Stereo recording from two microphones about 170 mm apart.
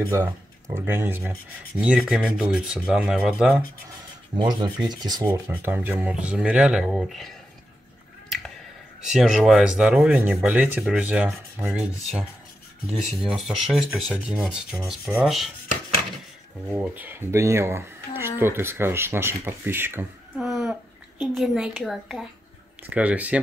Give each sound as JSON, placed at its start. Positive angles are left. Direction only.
{"t": 0.1, "sound": "speech", "side_deg": -15}
{"t": 4.4, "sound": "rub", "side_deg": -25}
{"t": 5.2, "sound": "speech", "side_deg": -10}
{"t": 9.0, "sound": "speech", "side_deg": -5}
{"t": 11.7, "sound": "speech", "side_deg": 0}
{"t": 16.7, "sound": "speech", "side_deg": -10}
{"t": 20.3, "sound": "a sound", "side_deg": 0}
{"t": 21.2, "sound": "speech", "side_deg": -5}